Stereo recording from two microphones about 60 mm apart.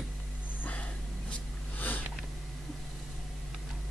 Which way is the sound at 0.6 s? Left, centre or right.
Left.